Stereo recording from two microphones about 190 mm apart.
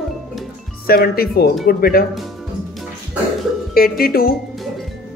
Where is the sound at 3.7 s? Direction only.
50° left (ahead or behind).